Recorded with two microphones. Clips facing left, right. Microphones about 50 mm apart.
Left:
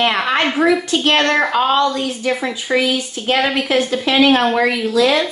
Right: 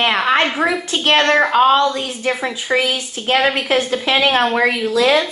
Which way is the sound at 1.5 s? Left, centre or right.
Centre.